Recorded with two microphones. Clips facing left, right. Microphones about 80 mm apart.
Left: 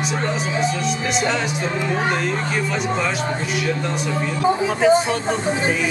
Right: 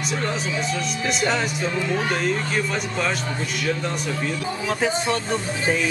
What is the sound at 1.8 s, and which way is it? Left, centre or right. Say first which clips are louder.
Speech: left 5 dB; left.